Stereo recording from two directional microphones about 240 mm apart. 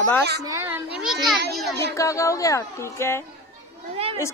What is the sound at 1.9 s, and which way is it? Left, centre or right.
A woman's voice, centre.